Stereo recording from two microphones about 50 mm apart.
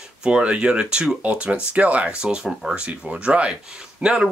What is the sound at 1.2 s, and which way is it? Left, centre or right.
Speech, right.